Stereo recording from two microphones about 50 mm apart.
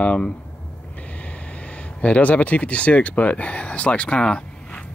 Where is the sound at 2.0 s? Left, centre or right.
Left.